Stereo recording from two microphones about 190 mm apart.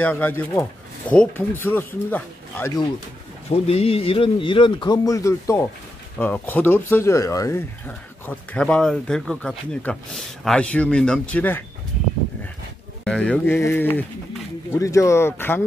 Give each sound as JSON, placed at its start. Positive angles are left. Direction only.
{"t": 0.0, "sound": "speech", "side_deg": 10}
{"t": 3.4, "sound": "speech", "side_deg": 30}
{"t": 13.0, "sound": "speech", "side_deg": 5}